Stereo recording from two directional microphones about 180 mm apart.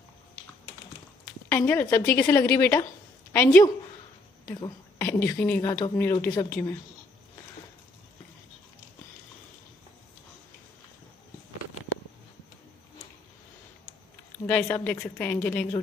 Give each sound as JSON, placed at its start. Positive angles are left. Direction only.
{"t": 1.5, "sound": "speech", "side_deg": 15}
{"t": 14.4, "sound": "speech", "side_deg": 10}